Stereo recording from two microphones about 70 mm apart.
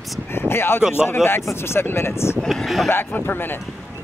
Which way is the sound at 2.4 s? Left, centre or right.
Centre.